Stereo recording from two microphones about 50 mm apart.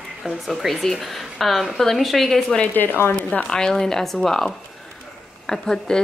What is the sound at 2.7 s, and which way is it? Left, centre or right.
Speech, left.